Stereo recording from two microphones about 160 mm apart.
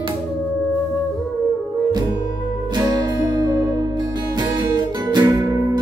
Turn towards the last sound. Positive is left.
turn(degrees=-20)  # may be behind; listen again after turning